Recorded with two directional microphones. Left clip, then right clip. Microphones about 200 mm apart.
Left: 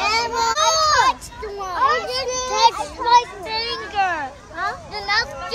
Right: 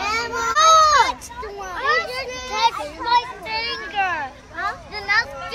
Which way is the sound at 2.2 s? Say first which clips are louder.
Left 4 dB; 60° left (ahead or behind).